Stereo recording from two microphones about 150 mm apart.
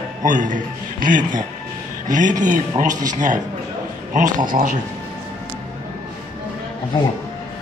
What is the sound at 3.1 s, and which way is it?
A man's voice, 60° right (ahead or behind).